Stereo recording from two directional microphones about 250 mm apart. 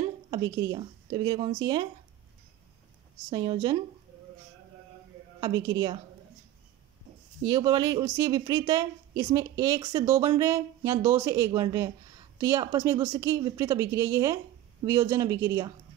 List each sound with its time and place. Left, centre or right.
0.3 s a woman's voice: centre
3.3 s a woman's voice: centre
5.4 s a woman's voice: centre
7.4 s a woman's voice: centre